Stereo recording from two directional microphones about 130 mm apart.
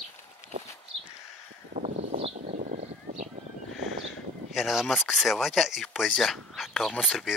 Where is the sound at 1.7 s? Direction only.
60° right (ahead or behind).